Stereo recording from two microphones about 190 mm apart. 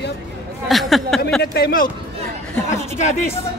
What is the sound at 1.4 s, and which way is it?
Speech, 55° left (ahead or behind).